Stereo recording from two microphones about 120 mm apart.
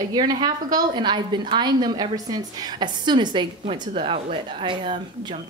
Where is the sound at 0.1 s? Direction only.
35° right (ahead or behind).